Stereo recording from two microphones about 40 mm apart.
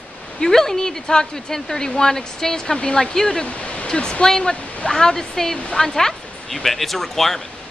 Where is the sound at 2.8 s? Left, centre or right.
Left.